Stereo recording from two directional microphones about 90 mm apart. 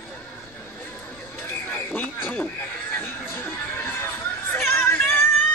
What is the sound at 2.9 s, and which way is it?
Chatter, 25° left (ahead or behind).